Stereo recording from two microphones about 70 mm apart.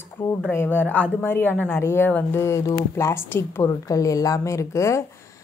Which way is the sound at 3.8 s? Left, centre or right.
Left.